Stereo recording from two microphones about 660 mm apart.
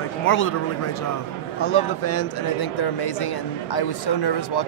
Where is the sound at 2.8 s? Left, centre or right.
Left.